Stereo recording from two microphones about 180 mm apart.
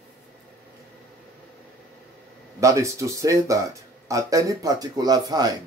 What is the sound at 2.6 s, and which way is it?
Speech, 15° right (ahead or behind).